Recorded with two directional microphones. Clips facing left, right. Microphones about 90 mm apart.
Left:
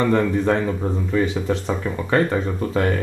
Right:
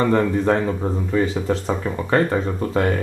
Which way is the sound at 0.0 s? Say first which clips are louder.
Right 1 dB; 35° right (ahead or behind).